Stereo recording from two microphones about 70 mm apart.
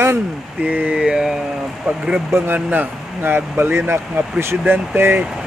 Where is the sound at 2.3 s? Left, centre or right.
Right.